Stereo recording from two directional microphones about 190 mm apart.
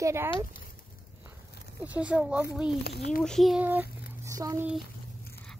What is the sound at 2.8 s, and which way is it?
Speech, 55° left (ahead or behind).